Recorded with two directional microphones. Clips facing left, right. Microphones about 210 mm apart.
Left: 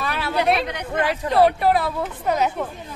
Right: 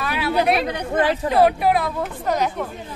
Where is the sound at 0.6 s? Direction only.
30° right (ahead or behind).